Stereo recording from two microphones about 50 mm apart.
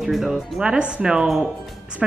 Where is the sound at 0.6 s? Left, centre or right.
Centre.